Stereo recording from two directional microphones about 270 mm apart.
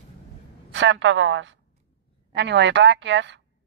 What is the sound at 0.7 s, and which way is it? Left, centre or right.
A woman's voice, right.